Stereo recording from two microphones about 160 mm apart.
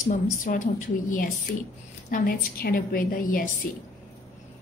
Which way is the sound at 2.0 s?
60° left (ahead or behind).